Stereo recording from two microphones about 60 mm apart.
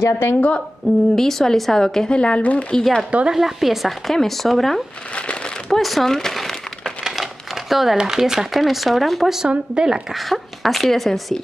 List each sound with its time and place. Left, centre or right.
0.0 s a woman's voice: left
1.1 s speech: centre
2.7 s speech: centre
3.3 s speech: centre
5.7 s crumpling: centre
7.7 s speech: centre
9.5 s speech: centre
10.3 s speech: centre